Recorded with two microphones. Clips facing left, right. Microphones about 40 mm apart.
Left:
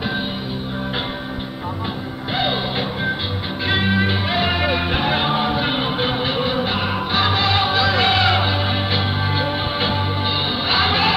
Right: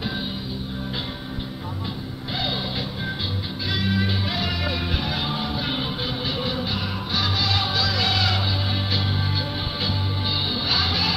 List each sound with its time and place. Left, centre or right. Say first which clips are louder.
3.6 s music: left 6 dB; left